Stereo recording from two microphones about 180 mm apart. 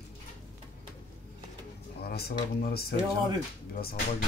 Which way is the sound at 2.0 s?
60° left (ahead or behind).